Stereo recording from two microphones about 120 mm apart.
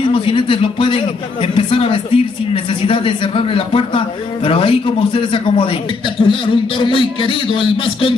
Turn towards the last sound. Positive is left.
turn(degrees=45)  # may be behind; listen again after turning